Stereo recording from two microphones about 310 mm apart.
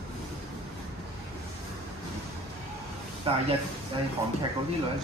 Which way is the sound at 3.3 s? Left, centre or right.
Centre.